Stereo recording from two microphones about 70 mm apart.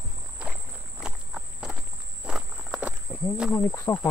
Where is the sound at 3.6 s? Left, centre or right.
Left.